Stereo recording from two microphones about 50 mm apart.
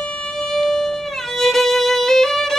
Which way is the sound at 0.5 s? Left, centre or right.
Centre.